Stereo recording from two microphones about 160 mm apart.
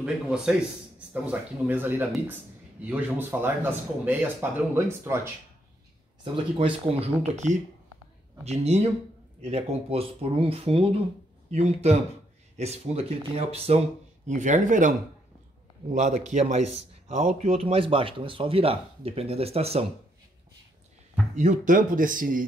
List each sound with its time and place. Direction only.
0.0 s a man's voice: 5° right (ahead or behind)
6.3 s speech: 35° right (ahead or behind)
21.4 s speech: 50° right (ahead or behind)